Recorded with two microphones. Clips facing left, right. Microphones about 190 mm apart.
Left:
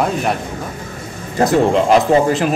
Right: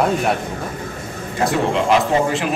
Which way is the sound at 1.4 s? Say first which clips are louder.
Left 4 dB; 40° left (ahead or behind).